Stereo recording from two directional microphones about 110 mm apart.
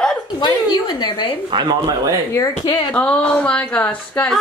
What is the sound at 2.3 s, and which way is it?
Speech, 30° left (ahead or behind).